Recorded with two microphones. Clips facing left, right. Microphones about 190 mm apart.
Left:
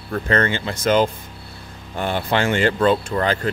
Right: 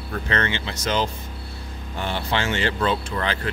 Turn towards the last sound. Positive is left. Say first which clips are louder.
# left 5 dB
turn(degrees=40)  # may be behind; listen again after turning